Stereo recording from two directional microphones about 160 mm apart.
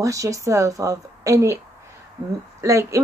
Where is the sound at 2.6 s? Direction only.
20° right (ahead or behind).